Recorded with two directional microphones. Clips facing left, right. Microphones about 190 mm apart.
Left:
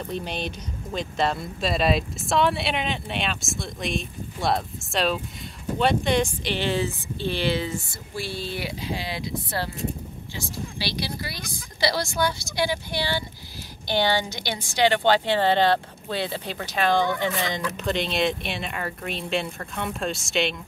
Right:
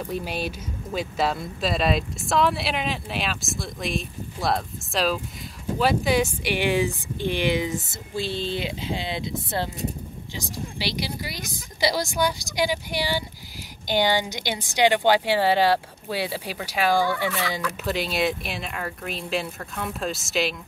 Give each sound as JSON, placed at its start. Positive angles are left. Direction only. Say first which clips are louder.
{"t": 0.0, "sound": "a woman's voice", "louder": "right 1 dB", "side_deg": -5}
{"t": 17.3, "sound": "speech", "louder": "even", "side_deg": 25}
{"t": 17.7, "sound": "speech", "louder": "left 1 dB", "side_deg": -5}